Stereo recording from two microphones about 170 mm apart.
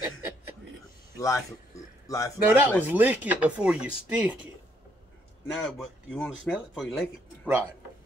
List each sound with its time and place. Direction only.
0.0 s a sound: 15° right (ahead or behind)
1.1 s a man's voice: 20° left (ahead or behind)
2.4 s speech: 15° right (ahead or behind)
5.5 s speech: 5° left (ahead or behind)